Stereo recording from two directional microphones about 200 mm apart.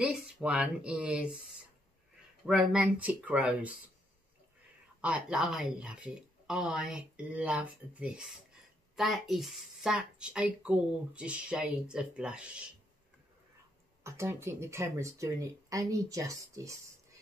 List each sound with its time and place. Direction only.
0.0 s speech: 5° right (ahead or behind)
2.4 s speech: 5° right (ahead or behind)
5.0 s speech: 5° right (ahead or behind)
14.0 s speech: 15° right (ahead or behind)